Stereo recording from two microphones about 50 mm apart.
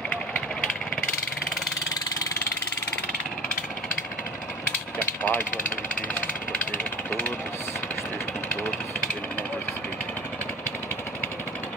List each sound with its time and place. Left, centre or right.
0.1 s vehicle: left
5.2 s speech: left
6.8 s vehicle: left